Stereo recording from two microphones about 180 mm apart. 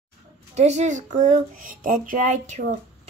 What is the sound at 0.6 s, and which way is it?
Speech, 40° right (ahead or behind).